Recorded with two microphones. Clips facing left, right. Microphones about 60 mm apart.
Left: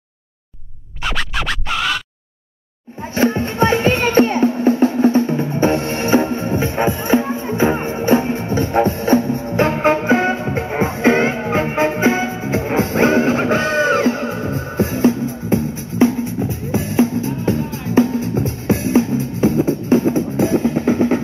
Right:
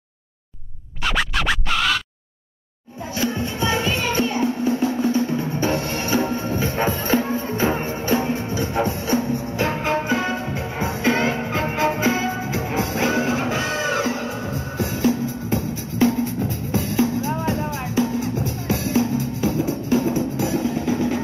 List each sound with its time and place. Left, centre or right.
1.0 s music: centre
3.2 s music: left